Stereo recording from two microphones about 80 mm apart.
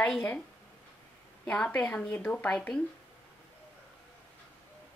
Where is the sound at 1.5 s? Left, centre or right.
Centre.